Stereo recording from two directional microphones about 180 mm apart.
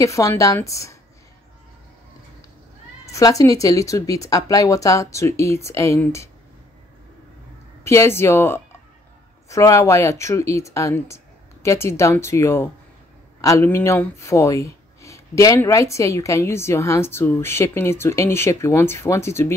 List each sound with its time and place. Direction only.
0.0 s speech: 15° left (ahead or behind)
3.1 s speech: 20° left (ahead or behind)
7.8 s speech: 15° left (ahead or behind)